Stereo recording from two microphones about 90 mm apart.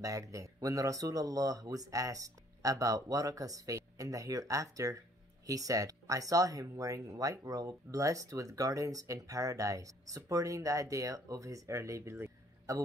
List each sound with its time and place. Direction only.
0.0 s speech: 40° right (ahead or behind)